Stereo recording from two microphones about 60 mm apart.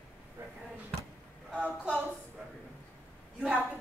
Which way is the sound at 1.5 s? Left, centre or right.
Right.